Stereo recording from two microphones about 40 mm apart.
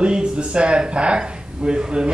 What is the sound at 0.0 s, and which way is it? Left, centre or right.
Speech, right.